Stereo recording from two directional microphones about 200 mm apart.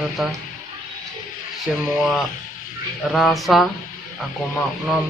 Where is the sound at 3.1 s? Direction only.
Centre (ahead or behind).